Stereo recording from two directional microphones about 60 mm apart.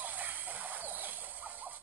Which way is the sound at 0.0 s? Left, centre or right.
Right.